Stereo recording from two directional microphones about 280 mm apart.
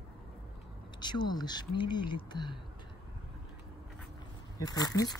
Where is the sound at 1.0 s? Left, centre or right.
Centre.